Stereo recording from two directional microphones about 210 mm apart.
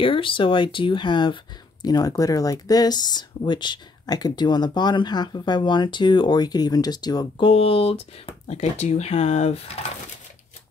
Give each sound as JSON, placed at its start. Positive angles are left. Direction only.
{"t": 0.0, "sound": "speech", "side_deg": 25}